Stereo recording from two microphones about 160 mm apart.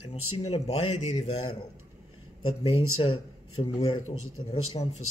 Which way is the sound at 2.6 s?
35° left (ahead or behind).